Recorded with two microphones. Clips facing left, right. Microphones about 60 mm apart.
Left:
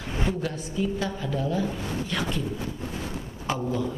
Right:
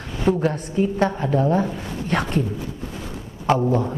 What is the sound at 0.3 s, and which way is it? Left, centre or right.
Speech, right.